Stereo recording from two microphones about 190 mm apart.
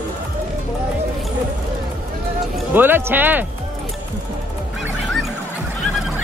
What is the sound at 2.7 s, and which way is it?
Speech, 10° right (ahead or behind).